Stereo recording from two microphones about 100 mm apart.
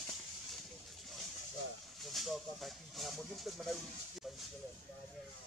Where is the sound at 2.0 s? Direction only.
Centre (ahead or behind).